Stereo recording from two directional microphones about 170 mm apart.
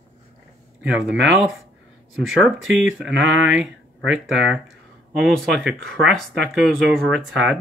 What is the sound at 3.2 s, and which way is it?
Speech, 90° right.